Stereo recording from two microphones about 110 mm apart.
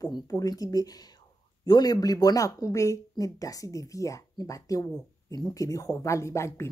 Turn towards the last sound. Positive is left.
turn(degrees=25)  # may be behind; listen again after turning